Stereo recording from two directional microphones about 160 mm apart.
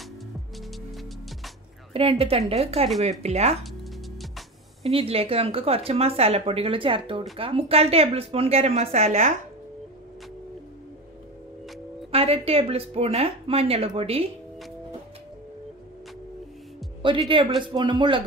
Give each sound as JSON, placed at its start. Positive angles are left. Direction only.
{"t": 0.6, "sound": "music", "side_deg": 0}
{"t": 2.0, "sound": "speech", "side_deg": -35}
{"t": 4.8, "sound": "speech", "side_deg": -40}
{"t": 12.1, "sound": "speech", "side_deg": -40}
{"t": 17.3, "sound": "speech", "side_deg": -30}